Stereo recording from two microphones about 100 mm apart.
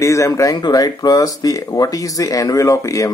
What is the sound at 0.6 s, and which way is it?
Speech, 45° left (ahead or behind).